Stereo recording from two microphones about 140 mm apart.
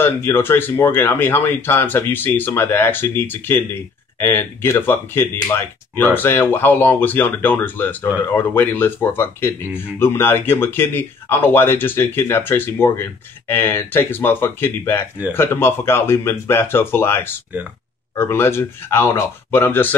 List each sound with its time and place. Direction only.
0.0 s speech: 15° left (ahead or behind)